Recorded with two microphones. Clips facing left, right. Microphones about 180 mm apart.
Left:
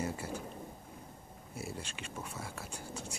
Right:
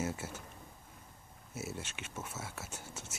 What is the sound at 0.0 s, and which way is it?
Speech, 5° right (ahead or behind).